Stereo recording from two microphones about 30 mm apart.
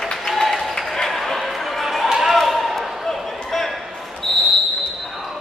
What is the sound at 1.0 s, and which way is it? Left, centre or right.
Chatter, centre.